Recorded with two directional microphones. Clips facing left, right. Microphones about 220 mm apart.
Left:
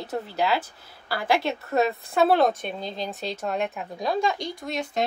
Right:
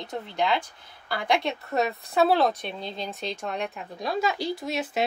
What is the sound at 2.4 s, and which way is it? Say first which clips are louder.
Speech: left 3 dB; 45° left (ahead or behind).